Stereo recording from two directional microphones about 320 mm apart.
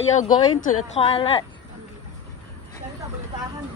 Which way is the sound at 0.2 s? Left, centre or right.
Left.